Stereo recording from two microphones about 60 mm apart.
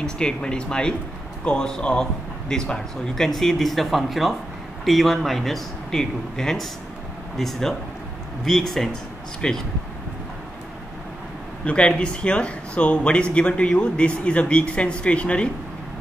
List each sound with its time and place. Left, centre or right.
0.0 s a man's voice: centre
9.4 s a man's voice: centre
11.6 s speech: centre